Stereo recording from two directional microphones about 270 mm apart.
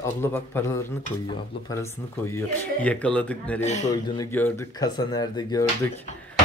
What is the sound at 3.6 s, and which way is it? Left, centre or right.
Speech, left.